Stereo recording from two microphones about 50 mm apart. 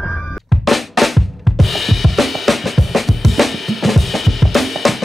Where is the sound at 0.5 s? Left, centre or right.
Centre.